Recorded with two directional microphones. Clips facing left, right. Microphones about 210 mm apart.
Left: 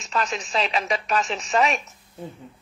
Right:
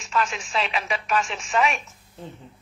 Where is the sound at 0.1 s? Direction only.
40° left (ahead or behind).